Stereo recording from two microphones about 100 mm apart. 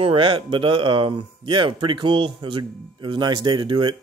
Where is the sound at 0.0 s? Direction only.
60° right (ahead or behind).